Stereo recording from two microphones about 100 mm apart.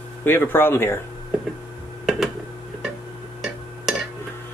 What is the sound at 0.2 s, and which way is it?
Speech, 20° left (ahead or behind).